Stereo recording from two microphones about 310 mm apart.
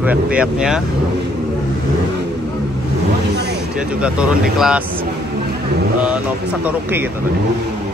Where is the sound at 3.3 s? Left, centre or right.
Right.